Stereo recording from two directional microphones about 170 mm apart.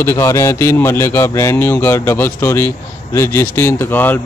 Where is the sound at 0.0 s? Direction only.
15° left (ahead or behind).